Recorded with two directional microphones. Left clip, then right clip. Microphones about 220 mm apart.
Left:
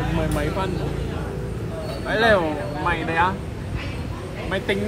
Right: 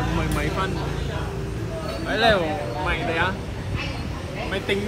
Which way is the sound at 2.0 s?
15° left (ahead or behind).